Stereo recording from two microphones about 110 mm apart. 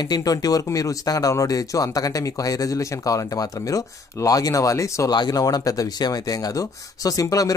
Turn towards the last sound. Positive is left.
turn(degrees=30)  # may be behind; listen again after turning